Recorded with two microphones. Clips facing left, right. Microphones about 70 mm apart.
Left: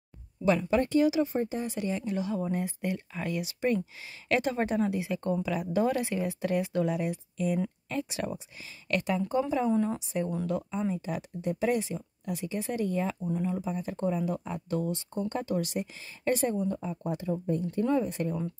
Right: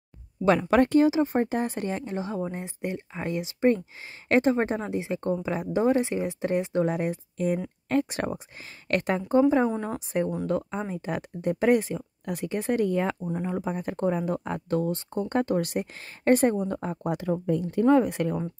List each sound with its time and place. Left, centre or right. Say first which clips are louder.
1.0 s speech: right 3 dB; right
1.3 s speech: right 5 dB; right
6.9 s speech: right 3 dB; right
13.3 s speech: right 2 dB; right
17.9 s speech: right 6 dB; right